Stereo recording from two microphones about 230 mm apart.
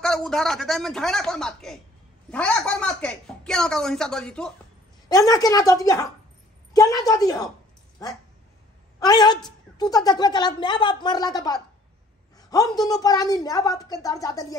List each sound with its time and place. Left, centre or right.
0.0 s a woman's voice: centre
5.0 s a woman's voice: centre